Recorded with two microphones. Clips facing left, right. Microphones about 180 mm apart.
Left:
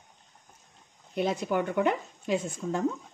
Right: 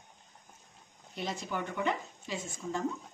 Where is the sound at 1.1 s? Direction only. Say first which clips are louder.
Left 9 dB; 55° left (ahead or behind).